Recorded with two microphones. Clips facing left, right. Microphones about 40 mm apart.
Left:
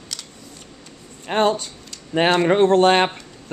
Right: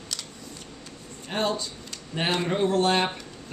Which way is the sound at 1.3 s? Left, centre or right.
Left.